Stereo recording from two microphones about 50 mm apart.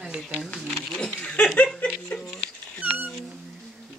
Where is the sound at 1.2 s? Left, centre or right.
Left.